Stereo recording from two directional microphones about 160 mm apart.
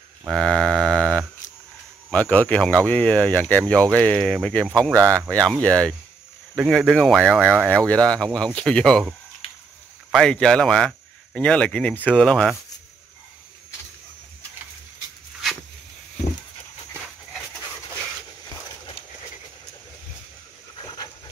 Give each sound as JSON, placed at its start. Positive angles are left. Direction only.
{"t": 0.3, "sound": "cattle", "side_deg": 5}
{"t": 2.0, "sound": "speech", "side_deg": 5}
{"t": 10.1, "sound": "speech", "side_deg": 5}
{"t": 20.7, "sound": "pant", "side_deg": 25}